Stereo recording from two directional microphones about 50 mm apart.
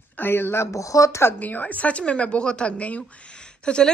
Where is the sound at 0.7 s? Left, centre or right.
Left.